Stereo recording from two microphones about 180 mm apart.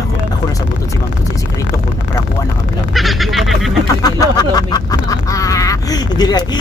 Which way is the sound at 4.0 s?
20° left (ahead or behind).